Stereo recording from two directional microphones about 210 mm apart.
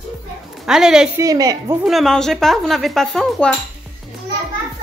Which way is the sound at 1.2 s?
15° right (ahead or behind).